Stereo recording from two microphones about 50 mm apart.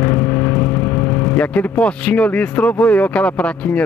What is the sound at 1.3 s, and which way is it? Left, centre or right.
Speech, left.